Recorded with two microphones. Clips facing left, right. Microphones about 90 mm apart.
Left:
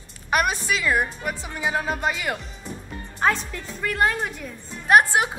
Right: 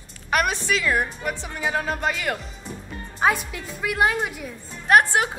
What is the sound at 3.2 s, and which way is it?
A woman's voice, 10° right (ahead or behind).